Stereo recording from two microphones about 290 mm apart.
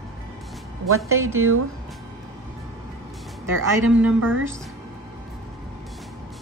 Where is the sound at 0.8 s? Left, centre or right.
Right.